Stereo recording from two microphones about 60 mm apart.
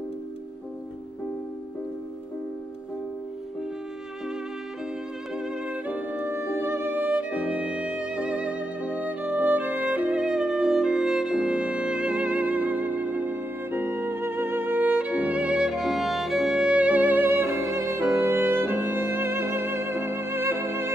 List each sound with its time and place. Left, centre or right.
5.3 s music: centre
5.9 s music: right
10.2 s music: centre
16.6 s music: centre; by 17.6 s right
17.6 s music: right
18.0 s music: right